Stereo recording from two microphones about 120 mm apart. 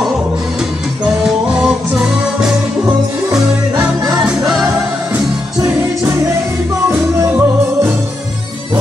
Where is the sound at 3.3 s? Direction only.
30° right (ahead or behind).